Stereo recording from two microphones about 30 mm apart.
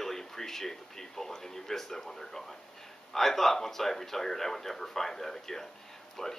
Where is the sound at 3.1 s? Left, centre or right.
Centre.